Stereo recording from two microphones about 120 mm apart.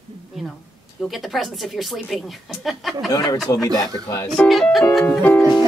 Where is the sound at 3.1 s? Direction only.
30° left (ahead or behind).